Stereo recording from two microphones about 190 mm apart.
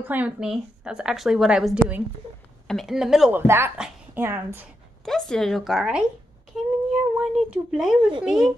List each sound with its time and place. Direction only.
0.0 s a woman's voice: 10° right (ahead or behind)
5.0 s a woman's voice: 5° left (ahead or behind)
6.5 s a sound: centre (ahead or behind)
8.2 s a woman's voice: 5° right (ahead or behind)